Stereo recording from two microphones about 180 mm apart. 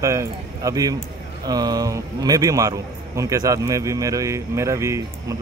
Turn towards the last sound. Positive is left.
turn(degrees=-15)  # may be behind; listen again after turning